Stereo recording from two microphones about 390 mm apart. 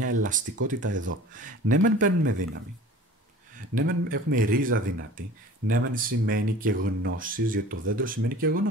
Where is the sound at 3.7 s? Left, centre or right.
Right.